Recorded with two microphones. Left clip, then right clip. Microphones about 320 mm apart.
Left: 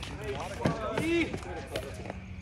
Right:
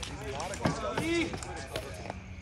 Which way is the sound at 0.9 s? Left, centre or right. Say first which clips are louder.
Left 2 dB; centre.